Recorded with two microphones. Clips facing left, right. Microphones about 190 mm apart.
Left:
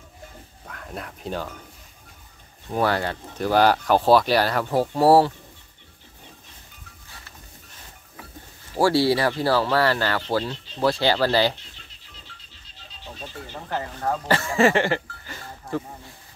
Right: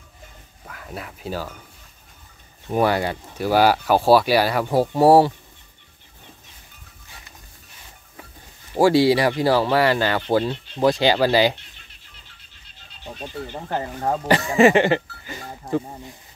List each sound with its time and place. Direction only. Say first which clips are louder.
0.7 s speech: right 1 dB; 5° right (ahead or behind)
2.7 s speech: right 3 dB; 15° right (ahead or behind)
7.1 s goat: right 1 dB; 15° right (ahead or behind)
8.7 s speech: right 4 dB; 15° right (ahead or behind)
13.2 s speech: right 6 dB; 20° right (ahead or behind)